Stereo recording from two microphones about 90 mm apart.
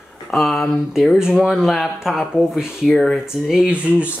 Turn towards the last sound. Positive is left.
turn(degrees=-15)  # may be behind; listen again after turning